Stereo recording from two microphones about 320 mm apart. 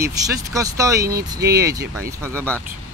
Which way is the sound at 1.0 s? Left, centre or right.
Right.